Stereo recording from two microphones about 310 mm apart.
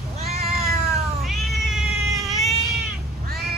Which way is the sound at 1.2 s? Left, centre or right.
Centre.